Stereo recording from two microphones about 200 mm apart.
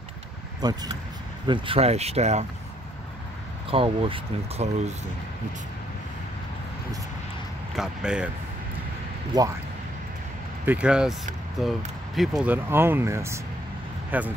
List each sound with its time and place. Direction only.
0.6 s speech: 20° right (ahead or behind)
3.7 s speech: 25° right (ahead or behind)
7.7 s speech: 5° right (ahead or behind)
10.6 s speech: 5° right (ahead or behind)